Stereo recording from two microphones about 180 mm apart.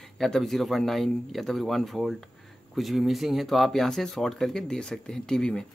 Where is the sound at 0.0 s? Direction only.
Centre (ahead or behind).